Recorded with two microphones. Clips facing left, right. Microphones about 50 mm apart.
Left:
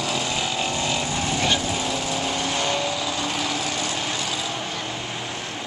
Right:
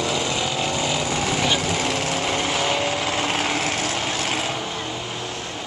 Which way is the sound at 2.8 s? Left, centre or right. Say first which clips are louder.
Right 3 dB; right.